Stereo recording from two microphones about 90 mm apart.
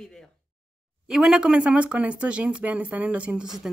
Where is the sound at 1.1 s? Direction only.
5° right (ahead or behind).